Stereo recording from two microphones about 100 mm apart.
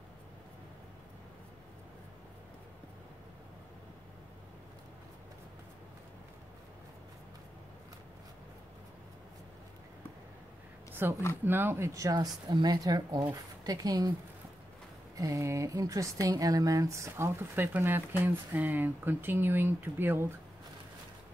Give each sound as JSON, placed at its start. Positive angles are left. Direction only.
{"t": 11.0, "sound": "speech", "side_deg": -20}
{"t": 15.1, "sound": "speech", "side_deg": -30}